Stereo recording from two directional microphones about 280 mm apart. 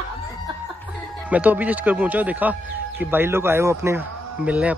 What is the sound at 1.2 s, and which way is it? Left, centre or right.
Speech, centre.